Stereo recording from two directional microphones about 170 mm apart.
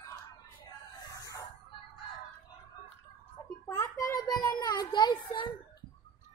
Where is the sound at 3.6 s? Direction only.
20° left (ahead or behind).